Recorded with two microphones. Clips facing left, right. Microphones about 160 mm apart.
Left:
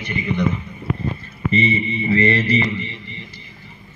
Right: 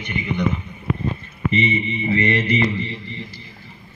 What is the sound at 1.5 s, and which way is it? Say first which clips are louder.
Speech: left 2 dB; 15° right (ahead or behind).